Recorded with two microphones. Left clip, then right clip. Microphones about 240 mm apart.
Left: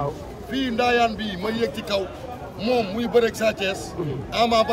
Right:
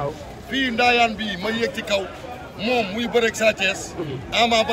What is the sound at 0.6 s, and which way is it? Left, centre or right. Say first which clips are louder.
Speech: right 2 dB; centre.